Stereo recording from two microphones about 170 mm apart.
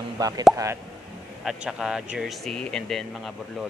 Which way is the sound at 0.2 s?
20° right (ahead or behind).